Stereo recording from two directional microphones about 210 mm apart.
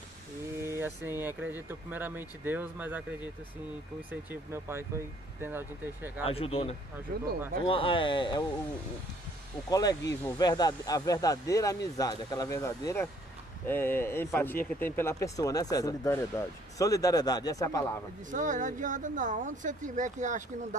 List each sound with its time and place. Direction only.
0.6 s a sound: 10° right (ahead or behind)
1.2 s speech: 10° right (ahead or behind)
6.2 s speech: 25° left (ahead or behind)
7.1 s speech: 45° right (ahead or behind)
7.6 s speech: 25° left (ahead or behind)
9.7 s speech: 15° left (ahead or behind)
18.3 s speech: 35° right (ahead or behind)